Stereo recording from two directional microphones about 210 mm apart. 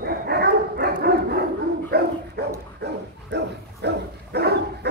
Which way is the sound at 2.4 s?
50° right (ahead or behind).